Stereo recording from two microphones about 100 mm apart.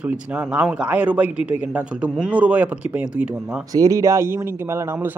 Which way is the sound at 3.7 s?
35° right (ahead or behind).